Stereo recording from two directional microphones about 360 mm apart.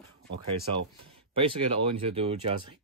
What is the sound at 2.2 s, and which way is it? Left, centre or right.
Speech, centre.